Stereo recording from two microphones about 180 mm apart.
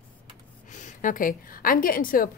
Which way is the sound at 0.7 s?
45° left (ahead or behind).